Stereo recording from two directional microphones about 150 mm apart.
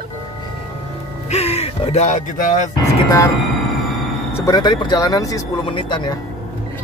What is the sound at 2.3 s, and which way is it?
Speech, 50° left (ahead or behind).